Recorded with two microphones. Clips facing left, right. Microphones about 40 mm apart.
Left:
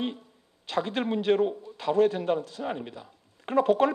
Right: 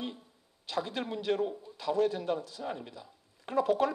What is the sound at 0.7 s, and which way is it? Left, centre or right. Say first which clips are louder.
Speech: left 6 dB; left.